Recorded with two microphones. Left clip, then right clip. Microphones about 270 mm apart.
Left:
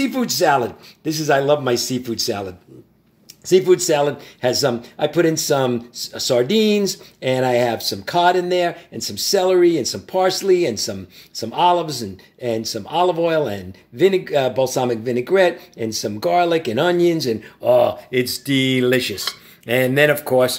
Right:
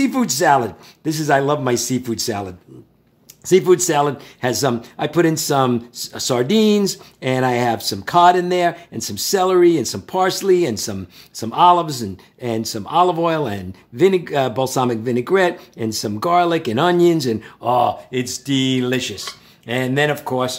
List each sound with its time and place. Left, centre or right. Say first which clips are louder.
0.0 s speech: right 1 dB; centre
3.4 s speech: even; centre